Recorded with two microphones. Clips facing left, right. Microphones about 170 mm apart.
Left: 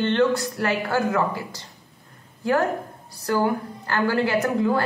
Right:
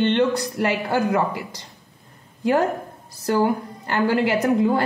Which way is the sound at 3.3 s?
25° right (ahead or behind).